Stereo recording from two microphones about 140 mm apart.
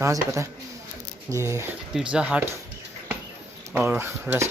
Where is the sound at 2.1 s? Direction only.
10° right (ahead or behind).